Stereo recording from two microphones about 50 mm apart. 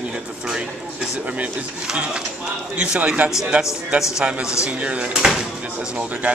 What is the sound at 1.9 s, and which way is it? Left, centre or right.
A man's voice, centre.